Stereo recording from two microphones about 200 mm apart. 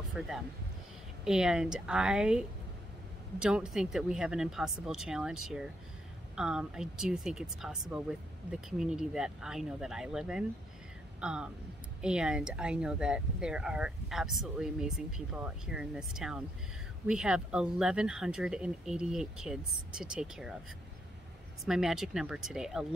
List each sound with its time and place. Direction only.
0.2 s speech: 5° right (ahead or behind)
21.6 s speech: centre (ahead or behind)